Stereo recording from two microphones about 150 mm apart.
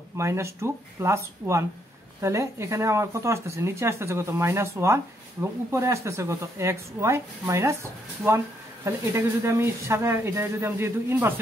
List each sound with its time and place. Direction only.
0.2 s speech: 20° right (ahead or behind)